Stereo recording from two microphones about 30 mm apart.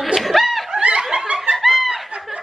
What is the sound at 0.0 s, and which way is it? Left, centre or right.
Snicker, centre.